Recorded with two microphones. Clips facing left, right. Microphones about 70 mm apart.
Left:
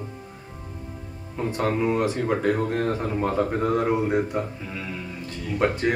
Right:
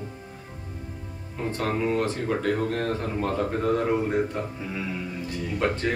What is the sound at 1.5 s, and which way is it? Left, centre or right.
Speech, centre.